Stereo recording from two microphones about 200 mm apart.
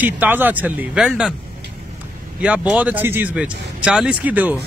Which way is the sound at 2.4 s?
5° right (ahead or behind).